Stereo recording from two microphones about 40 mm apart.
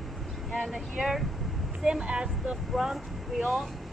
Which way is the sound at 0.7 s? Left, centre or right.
Centre.